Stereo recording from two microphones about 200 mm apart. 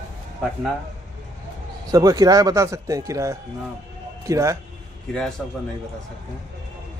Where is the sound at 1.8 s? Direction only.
20° right (ahead or behind).